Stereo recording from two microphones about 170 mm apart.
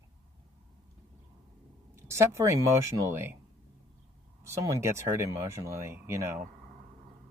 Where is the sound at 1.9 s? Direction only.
15° right (ahead or behind).